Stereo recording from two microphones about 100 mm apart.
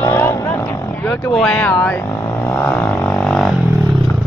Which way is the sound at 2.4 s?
15° left (ahead or behind).